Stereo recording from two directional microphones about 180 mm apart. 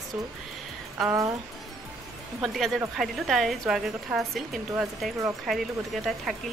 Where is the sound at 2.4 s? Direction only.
Centre (ahead or behind).